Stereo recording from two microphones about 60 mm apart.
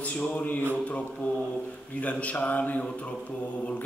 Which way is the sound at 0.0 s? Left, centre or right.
Left.